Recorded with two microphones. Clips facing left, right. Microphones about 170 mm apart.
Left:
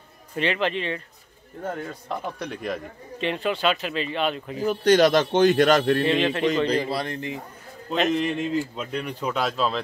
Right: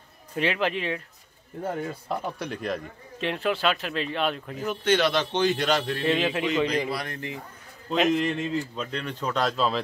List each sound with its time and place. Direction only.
0.4 s a man's voice: 5° right (ahead or behind)
4.6 s a man's voice: 40° left (ahead or behind)
6.0 s a man's voice: 5° right (ahead or behind)
6.9 s speech: 25° left (ahead or behind)
7.9 s a man's voice: centre (ahead or behind)